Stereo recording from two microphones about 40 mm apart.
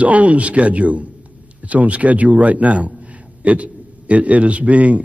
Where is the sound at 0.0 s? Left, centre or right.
Right.